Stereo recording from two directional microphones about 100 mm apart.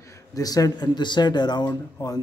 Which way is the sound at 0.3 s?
35° left (ahead or behind).